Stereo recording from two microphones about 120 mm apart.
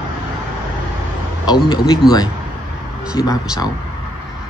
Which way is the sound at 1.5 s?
35° left (ahead or behind).